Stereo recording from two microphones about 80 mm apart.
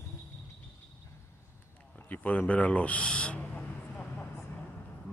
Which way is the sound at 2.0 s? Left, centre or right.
Left.